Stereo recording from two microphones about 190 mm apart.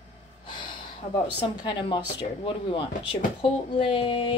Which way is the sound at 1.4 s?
25° left (ahead or behind).